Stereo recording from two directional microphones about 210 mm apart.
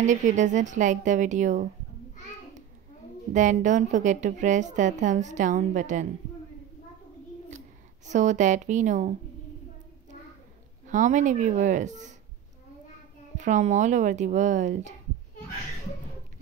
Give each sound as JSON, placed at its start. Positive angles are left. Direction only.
{"t": 0.0, "sound": "a woman's voice", "side_deg": -35}
{"t": 3.3, "sound": "a woman's voice", "side_deg": -35}
{"t": 8.1, "sound": "a woman's voice", "side_deg": -35}
{"t": 10.9, "sound": "a woman's voice", "side_deg": -35}
{"t": 13.4, "sound": "a woman's voice", "side_deg": -35}